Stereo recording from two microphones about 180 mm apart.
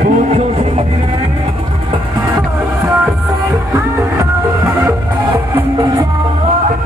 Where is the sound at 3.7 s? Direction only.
15° right (ahead or behind).